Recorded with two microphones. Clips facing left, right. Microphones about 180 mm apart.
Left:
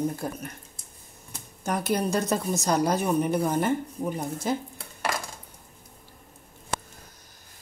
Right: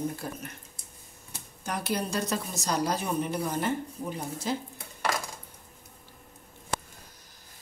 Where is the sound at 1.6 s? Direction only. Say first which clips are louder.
Left 5 dB; 50° left (ahead or behind).